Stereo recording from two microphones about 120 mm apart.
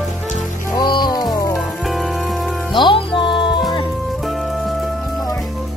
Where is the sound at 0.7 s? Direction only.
40° left (ahead or behind).